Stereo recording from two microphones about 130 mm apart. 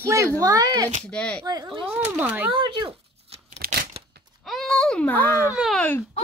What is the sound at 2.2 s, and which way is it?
Speech, 15° right (ahead or behind).